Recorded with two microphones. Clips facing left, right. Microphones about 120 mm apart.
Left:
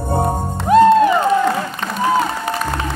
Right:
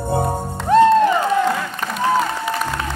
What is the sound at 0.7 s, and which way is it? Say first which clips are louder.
Music: left 2 dB; 10° left (ahead or behind).